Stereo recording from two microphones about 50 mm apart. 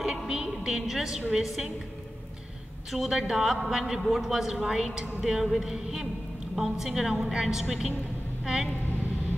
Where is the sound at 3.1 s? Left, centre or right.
Centre.